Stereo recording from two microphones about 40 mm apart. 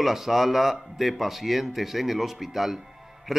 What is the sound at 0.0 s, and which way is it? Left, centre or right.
A man's voice, centre.